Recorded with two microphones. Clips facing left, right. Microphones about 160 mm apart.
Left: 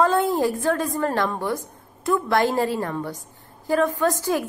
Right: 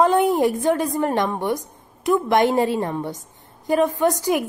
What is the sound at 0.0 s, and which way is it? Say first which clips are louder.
A woman's voice: right 3 dB; 20° right (ahead or behind).